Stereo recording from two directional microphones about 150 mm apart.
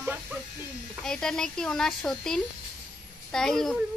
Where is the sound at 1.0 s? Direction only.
5° left (ahead or behind).